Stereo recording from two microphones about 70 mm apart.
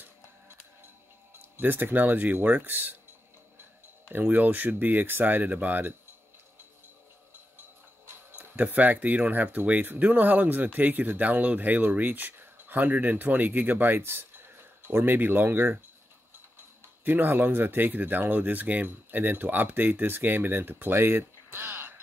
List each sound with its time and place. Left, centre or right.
1.6 s speech: right
4.1 s speech: right
8.4 s speech: right
17.0 s speech: right